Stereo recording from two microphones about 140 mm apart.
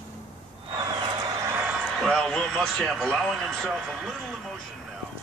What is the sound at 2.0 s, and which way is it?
Speech, 5° left (ahead or behind).